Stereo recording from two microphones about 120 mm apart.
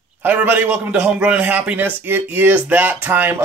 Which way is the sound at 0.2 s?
15° right (ahead or behind).